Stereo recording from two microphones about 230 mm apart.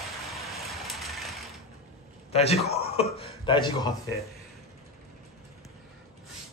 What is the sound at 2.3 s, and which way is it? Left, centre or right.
A man's voice, left.